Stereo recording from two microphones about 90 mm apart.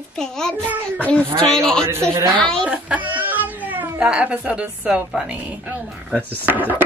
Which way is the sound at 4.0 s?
10° right (ahead or behind).